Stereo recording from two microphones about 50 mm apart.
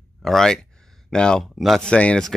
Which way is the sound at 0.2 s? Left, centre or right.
Centre.